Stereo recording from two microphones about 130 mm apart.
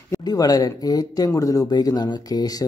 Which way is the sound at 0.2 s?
30° left (ahead or behind).